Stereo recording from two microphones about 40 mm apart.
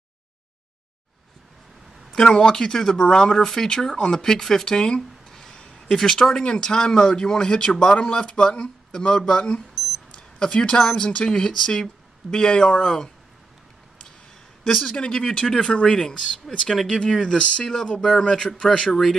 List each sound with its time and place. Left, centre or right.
2.1 s speech: centre
9.8 s a sound: centre
10.1 s speech: left
14.9 s speech: centre
17.3 s speech: left
17.9 s speech: centre
18.2 s speech: centre